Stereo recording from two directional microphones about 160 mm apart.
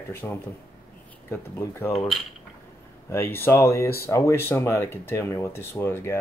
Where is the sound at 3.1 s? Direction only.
15° left (ahead or behind).